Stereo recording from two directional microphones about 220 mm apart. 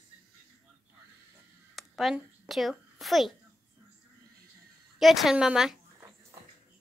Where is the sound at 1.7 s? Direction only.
Centre (ahead or behind).